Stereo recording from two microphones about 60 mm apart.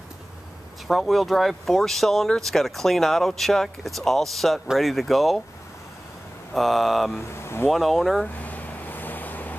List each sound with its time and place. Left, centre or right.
0.8 s speech: centre
6.5 s speech: centre
7.2 s speech: left
7.6 s speech: centre
8.4 s vehicle: left